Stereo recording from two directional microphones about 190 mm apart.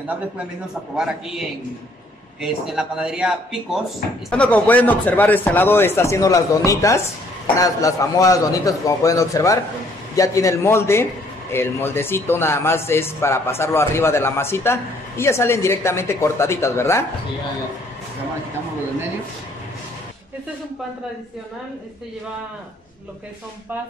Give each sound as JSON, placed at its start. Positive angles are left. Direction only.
{"t": 0.9, "sound": "speech", "side_deg": -5}
{"t": 2.4, "sound": "a man's voice", "side_deg": -5}